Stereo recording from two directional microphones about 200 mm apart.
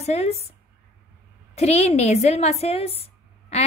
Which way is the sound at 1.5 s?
30° left (ahead or behind).